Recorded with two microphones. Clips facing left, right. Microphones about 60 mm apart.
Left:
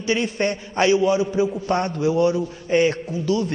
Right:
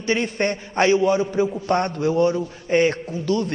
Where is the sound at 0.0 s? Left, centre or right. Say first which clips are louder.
Even; right.